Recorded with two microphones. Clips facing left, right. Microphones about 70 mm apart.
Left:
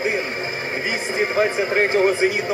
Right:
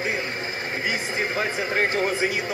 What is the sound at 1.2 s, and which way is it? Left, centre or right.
Speech, left.